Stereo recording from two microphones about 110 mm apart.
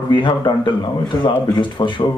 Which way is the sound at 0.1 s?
45° left (ahead or behind).